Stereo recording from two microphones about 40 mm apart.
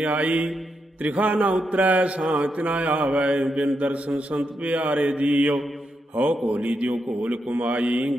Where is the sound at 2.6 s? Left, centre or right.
Right.